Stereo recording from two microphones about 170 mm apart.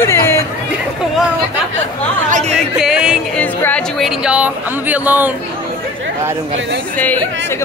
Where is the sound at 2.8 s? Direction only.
5° right (ahead or behind).